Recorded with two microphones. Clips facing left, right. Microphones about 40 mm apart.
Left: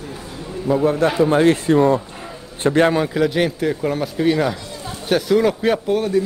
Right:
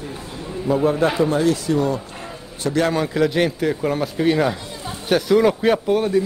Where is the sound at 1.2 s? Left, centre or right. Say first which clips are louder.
Left 4 dB; left.